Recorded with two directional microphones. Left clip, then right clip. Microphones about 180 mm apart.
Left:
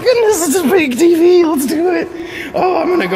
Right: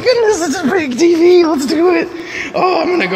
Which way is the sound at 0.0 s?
20° left (ahead or behind).